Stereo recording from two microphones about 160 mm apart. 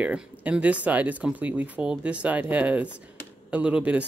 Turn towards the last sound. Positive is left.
turn(degrees=-10)  # may be behind; listen again after turning